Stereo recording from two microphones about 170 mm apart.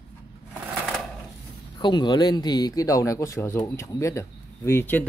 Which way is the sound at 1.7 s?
25° left (ahead or behind).